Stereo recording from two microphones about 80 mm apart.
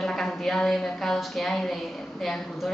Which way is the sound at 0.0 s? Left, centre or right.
Centre.